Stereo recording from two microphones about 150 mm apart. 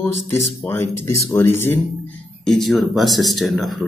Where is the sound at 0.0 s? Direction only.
15° left (ahead or behind).